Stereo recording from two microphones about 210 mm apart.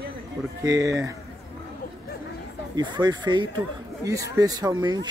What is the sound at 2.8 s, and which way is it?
Speech, 20° right (ahead or behind).